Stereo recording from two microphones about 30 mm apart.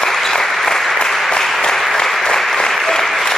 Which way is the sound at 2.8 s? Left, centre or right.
Centre.